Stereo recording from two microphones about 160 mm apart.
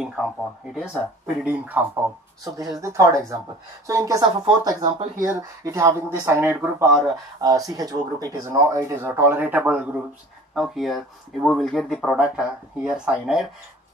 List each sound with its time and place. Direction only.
0.0 s speech: 5° right (ahead or behind)
2.4 s speech: 25° right (ahead or behind); by 13.5 s 5° right (ahead or behind)